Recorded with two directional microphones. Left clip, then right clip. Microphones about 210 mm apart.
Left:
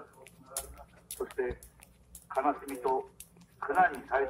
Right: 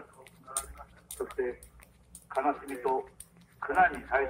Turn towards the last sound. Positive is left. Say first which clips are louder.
# right 1 dB
turn(degrees=5)  # may be behind; listen again after turning